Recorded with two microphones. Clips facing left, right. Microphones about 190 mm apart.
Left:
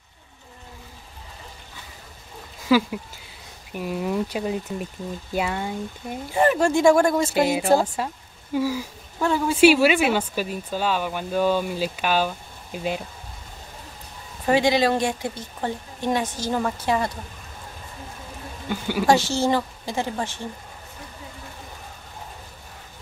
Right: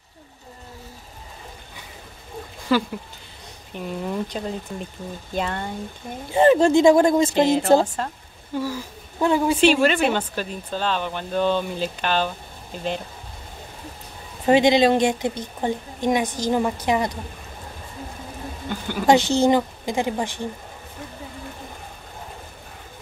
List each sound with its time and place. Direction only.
2.7 s speech: 5° left (ahead or behind)
6.3 s speech: 25° right (ahead or behind)
7.3 s speech: 10° left (ahead or behind)
9.2 s a woman's voice: 15° right (ahead or behind)
9.6 s speech: 10° left (ahead or behind)
14.4 s a woman's voice: 20° right (ahead or behind)
18.7 s speech: 10° left (ahead or behind)
19.0 s a woman's voice: 20° right (ahead or behind)